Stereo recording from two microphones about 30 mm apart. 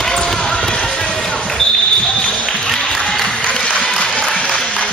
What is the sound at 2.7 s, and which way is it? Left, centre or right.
Applause, centre.